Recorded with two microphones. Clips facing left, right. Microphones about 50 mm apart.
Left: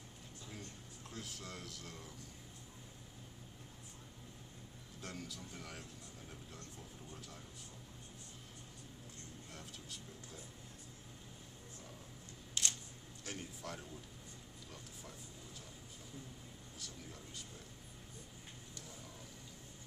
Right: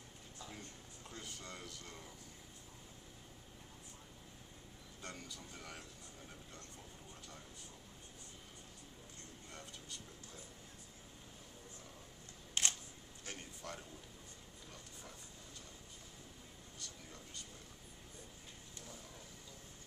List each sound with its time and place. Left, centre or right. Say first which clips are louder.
1.1 s speech: left 1 dB; centre
5.0 s speech: left 2 dB; centre
9.5 s speech: right 1 dB; centre
12.6 s camera: right 2 dB; right
13.2 s speech: left 3 dB; centre
16.7 s speech: left 2 dB; centre